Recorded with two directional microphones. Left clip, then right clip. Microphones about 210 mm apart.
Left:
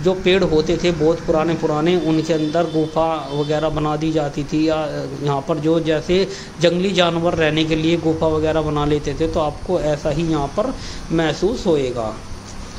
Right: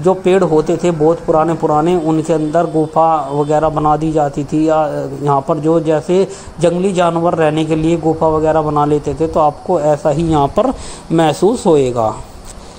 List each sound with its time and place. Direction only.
0.0 s speech: 20° right (ahead or behind); by 12.1 s 35° right (ahead or behind)